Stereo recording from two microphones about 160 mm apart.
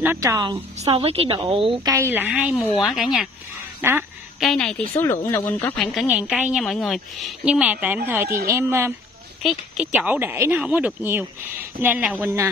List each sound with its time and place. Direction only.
0.0 s a woman's voice: 15° right (ahead or behind)
0.7 s a woman's voice: 35° right (ahead or behind)
1.8 s a woman's voice: 20° right (ahead or behind); by 3.3 s centre (ahead or behind)
3.8 s speech: 15° right (ahead or behind)
4.4 s a woman's voice: centre (ahead or behind)
4.9 s speech: 15° left (ahead or behind)
5.9 s a woman's voice: 5° right (ahead or behind)
9.4 s speech: centre (ahead or behind)